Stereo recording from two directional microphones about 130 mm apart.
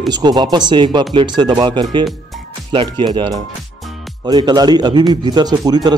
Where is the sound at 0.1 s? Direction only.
35° right (ahead or behind).